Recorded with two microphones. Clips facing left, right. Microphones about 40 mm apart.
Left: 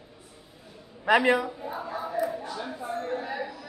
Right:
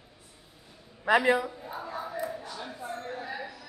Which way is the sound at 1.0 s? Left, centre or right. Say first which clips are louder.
Left 2 dB; left.